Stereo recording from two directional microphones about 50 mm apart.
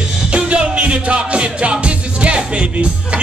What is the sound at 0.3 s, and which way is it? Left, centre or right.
Music, right.